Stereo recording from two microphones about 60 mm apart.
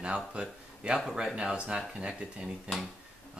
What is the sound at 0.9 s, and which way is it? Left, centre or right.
Speech, centre.